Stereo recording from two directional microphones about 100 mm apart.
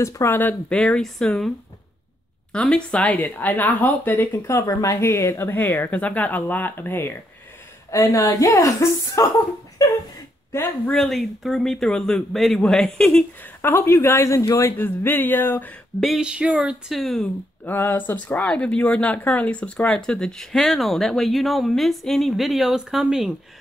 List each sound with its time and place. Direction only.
0.0 s speech: 25° left (ahead or behind); by 1.5 s 5° left (ahead or behind)
2.5 s speech: 10° left (ahead or behind)
7.9 s a woman's voice: 35° left (ahead or behind)
10.9 s speech: 5° left (ahead or behind)
13.6 s speech: 25° left (ahead or behind)
16.0 s a sound: 5° right (ahead or behind)
16.9 s speech: centre (ahead or behind)
17.6 s speech: 20° left (ahead or behind); by 23.3 s 5° right (ahead or behind)